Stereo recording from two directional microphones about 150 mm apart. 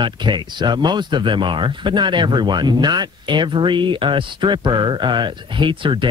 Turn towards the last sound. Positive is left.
turn(degrees=-35)  # may be behind; listen again after turning